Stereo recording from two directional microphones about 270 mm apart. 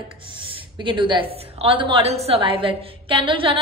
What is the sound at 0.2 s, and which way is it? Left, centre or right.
A woman's voice, centre.